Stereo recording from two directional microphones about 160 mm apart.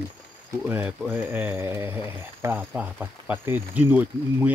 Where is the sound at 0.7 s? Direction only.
10° right (ahead or behind).